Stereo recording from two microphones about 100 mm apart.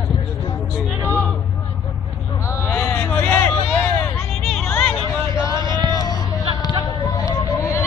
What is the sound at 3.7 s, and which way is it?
Hubbub, 25° left (ahead or behind).